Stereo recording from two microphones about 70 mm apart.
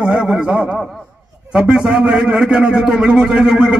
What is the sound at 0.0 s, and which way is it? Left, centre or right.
A man's voice, centre.